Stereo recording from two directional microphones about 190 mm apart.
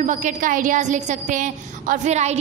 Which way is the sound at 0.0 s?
40° right (ahead or behind).